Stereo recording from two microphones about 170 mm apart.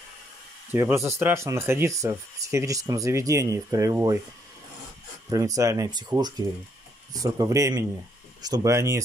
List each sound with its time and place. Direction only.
0.7 s speech: 15° right (ahead or behind)
5.3 s speech: 20° right (ahead or behind)